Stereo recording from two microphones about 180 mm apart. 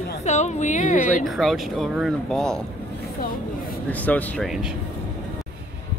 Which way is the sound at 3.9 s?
10° left (ahead or behind).